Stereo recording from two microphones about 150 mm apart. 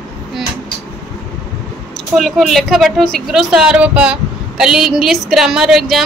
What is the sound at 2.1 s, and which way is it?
A woman's voice, centre (ahead or behind).